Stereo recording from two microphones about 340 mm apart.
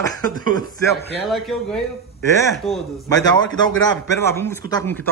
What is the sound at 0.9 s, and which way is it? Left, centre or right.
Speech, centre.